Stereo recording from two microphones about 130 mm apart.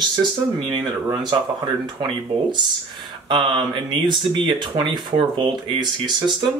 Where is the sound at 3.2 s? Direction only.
40° right (ahead or behind).